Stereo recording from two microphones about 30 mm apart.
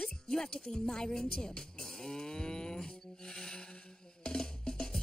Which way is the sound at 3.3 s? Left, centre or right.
Left.